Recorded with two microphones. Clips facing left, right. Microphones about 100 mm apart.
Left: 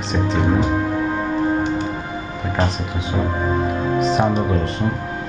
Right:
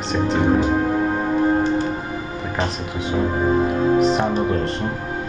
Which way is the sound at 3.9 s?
Centre (ahead or behind).